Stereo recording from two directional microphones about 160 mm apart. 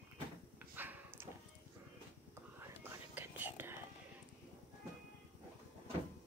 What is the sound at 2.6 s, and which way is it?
Whispering, 15° right (ahead or behind).